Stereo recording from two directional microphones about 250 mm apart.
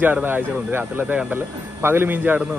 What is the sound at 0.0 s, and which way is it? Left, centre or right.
Speech, centre.